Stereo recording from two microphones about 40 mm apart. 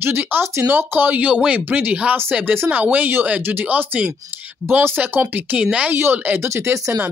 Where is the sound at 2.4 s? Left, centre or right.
Right.